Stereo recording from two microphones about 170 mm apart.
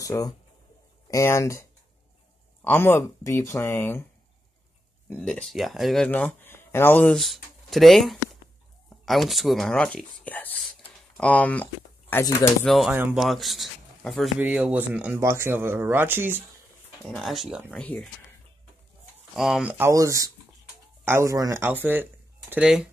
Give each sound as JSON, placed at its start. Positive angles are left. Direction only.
{"t": 0.0, "sound": "speech", "side_deg": 20}
{"t": 5.1, "sound": "speech", "side_deg": 5}
{"t": 12.6, "sound": "speech", "side_deg": 0}
{"t": 12.9, "sound": "speech", "side_deg": -10}
{"t": 13.2, "sound": "a man's voice", "side_deg": 0}
{"t": 14.4, "sound": "speech", "side_deg": -10}
{"t": 17.0, "sound": "speech", "side_deg": 0}
{"t": 19.3, "sound": "speech", "side_deg": 0}
{"t": 19.9, "sound": "speech", "side_deg": -20}